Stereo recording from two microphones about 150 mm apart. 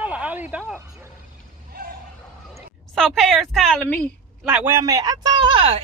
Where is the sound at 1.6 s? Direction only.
80° right.